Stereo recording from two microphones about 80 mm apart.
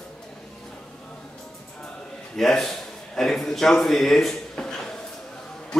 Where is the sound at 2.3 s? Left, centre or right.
Centre.